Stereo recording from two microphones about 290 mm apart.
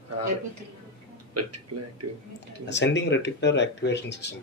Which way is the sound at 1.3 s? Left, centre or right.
Right.